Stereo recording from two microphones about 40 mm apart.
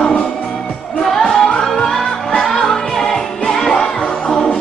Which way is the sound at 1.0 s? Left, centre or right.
Centre.